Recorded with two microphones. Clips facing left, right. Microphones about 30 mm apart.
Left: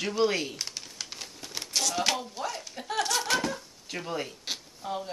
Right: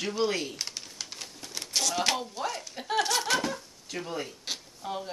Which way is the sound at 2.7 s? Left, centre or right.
Centre.